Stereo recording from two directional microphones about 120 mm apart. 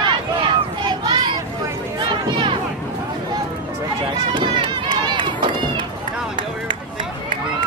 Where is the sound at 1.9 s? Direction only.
40° right (ahead or behind).